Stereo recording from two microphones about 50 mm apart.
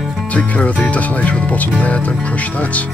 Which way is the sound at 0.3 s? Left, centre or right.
Left.